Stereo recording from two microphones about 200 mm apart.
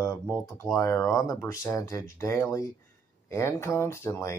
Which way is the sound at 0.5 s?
15° left (ahead or behind).